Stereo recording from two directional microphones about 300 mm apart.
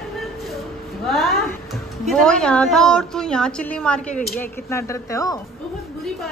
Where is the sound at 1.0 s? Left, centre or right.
Centre.